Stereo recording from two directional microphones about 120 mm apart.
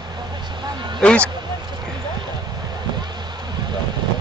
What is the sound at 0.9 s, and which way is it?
Speech, 10° left (ahead or behind).